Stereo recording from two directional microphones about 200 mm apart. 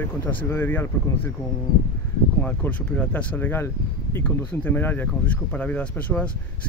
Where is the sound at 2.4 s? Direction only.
5° left (ahead or behind).